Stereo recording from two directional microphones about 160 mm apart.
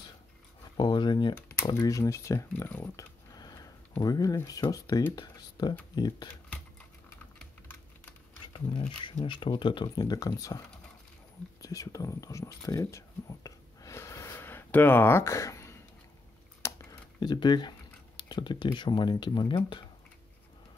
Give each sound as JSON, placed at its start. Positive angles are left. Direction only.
{"t": 0.7, "sound": "speech", "side_deg": 25}
{"t": 8.5, "sound": "speech", "side_deg": 30}
{"t": 11.6, "sound": "speech", "side_deg": 20}